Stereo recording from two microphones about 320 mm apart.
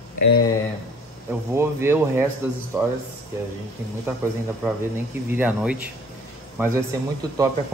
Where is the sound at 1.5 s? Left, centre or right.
Centre.